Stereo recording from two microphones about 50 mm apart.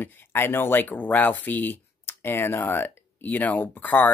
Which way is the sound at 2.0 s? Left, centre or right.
Left.